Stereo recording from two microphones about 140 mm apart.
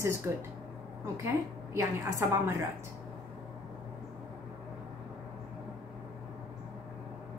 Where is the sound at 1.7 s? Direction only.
20° right (ahead or behind).